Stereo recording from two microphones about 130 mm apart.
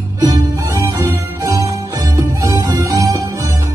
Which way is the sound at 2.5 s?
30° right (ahead or behind).